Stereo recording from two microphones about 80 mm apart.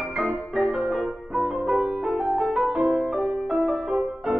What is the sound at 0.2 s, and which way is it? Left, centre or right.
Music, centre.